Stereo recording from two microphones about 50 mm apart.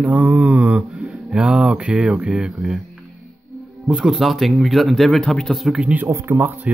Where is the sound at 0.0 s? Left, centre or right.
Right.